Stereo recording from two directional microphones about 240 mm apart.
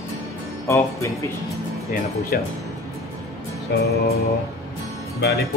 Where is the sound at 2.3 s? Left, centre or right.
Left.